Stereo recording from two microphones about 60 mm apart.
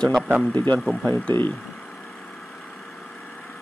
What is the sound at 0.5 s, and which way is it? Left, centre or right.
Speech, left.